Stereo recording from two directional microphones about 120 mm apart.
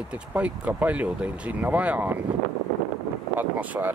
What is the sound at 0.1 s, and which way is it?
Speech, 10° right (ahead or behind).